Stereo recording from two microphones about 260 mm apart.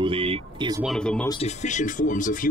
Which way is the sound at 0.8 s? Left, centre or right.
Centre.